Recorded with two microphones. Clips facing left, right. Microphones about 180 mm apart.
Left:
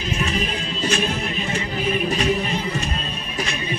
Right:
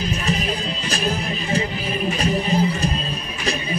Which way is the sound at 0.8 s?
35° right (ahead or behind).